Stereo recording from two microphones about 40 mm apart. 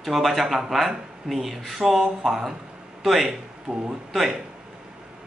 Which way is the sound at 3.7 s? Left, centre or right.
Right.